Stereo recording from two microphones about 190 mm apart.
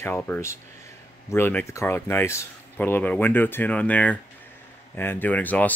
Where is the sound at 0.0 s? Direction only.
10° left (ahead or behind).